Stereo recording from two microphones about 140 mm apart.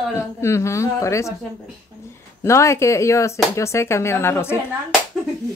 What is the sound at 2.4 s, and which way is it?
Speech, 20° left (ahead or behind).